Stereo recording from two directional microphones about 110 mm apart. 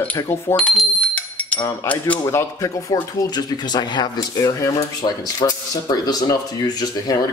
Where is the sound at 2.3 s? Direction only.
25° left (ahead or behind).